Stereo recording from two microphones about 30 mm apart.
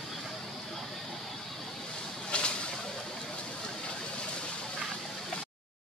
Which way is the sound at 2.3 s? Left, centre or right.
Left.